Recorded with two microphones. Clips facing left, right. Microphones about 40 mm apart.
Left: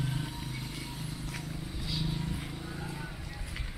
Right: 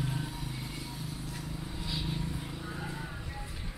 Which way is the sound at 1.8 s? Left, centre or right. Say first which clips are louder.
Left 1 dB; centre.